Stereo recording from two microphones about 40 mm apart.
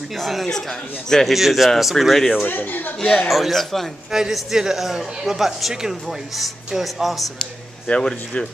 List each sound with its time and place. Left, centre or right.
0.1 s speech: centre
1.2 s speech: centre
2.4 s speech: left
3.0 s speech: centre
3.3 s speech: centre
4.1 s a man's voice: centre
7.8 s speech: left
8.1 s speech: centre